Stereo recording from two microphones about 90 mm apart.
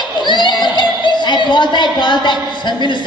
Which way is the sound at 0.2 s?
55° left (ahead or behind).